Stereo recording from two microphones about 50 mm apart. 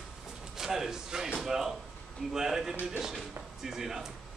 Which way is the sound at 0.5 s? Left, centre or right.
Centre.